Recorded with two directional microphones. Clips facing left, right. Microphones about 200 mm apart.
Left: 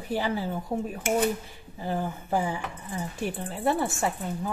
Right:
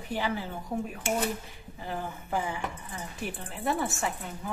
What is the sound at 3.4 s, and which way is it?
Speech, 30° left (ahead or behind).